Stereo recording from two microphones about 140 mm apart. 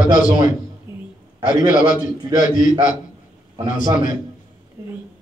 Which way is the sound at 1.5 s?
30° right (ahead or behind).